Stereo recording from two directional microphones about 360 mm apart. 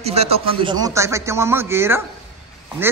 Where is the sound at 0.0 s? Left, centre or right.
Centre.